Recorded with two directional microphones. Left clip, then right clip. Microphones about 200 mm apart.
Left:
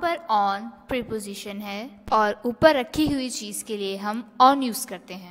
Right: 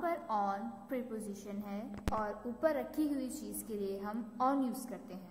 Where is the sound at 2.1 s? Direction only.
70° left (ahead or behind).